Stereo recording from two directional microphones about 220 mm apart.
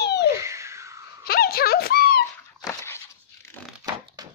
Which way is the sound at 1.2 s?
45° left (ahead or behind).